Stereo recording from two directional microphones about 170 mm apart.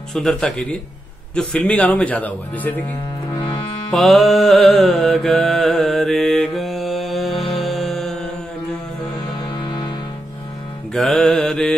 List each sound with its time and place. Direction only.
0.1 s mantra: 5° left (ahead or behind)
1.3 s a man's voice: 5° left (ahead or behind)
3.3 s music: 30° left (ahead or behind)
3.9 s music: centre (ahead or behind)
9.6 s music: 25° left (ahead or behind)
10.9 s mantra: 5° left (ahead or behind)